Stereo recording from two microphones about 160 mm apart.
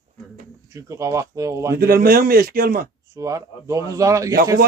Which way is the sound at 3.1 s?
20° right (ahead or behind).